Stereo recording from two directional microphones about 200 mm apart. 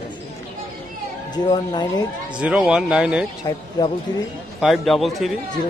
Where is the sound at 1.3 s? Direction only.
20° left (ahead or behind).